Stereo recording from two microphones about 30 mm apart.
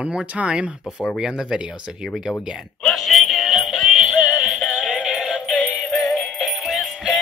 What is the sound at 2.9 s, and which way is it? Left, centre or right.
Music, centre.